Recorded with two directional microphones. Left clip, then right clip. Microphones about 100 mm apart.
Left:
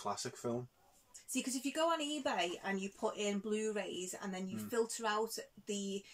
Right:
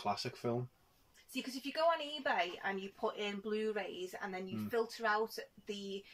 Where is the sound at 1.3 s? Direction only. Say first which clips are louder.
Left 2 dB; 40° left (ahead or behind).